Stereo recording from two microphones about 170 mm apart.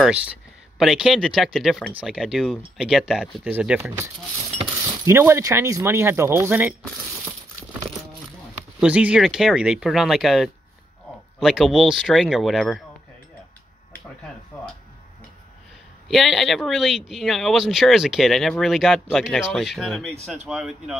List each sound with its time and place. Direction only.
0.7 s speech: centre (ahead or behind)
5.0 s speech: 15° right (ahead or behind)
8.7 s speech: 5° right (ahead or behind)
16.1 s speech: centre (ahead or behind)